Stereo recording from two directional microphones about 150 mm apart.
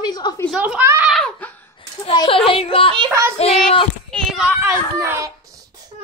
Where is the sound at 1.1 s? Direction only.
5° left (ahead or behind).